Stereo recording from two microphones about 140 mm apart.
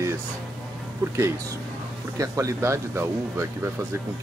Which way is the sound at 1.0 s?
20° right (ahead or behind).